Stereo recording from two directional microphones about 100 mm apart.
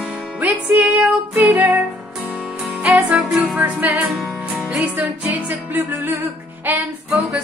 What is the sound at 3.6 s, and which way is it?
Music, 15° right (ahead or behind).